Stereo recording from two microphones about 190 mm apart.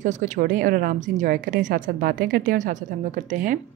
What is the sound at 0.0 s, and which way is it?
A woman's voice, 40° right (ahead or behind).